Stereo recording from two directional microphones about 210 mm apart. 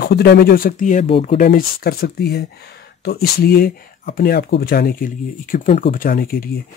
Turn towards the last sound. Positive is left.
turn(degrees=45)  # may be behind; listen again after turning